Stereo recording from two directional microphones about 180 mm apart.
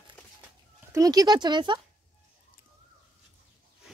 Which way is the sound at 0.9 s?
20° right (ahead or behind).